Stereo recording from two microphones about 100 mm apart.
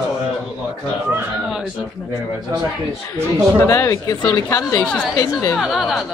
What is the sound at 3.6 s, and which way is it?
Speech, 30° left (ahead or behind).